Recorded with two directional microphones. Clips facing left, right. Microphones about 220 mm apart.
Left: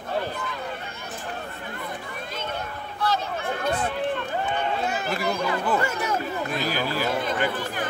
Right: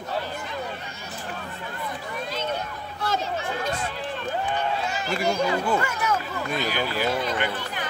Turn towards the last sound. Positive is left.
turn(degrees=50)  # may be behind; listen again after turning